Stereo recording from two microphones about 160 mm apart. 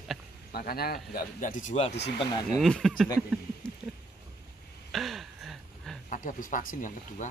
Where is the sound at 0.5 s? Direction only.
75° left (ahead or behind); by 2.0 s 45° left (ahead or behind).